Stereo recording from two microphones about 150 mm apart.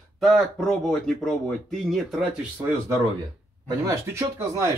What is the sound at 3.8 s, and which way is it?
Speech, 20° right (ahead or behind).